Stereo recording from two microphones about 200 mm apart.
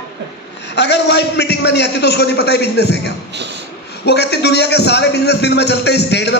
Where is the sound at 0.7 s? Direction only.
60° left (ahead or behind).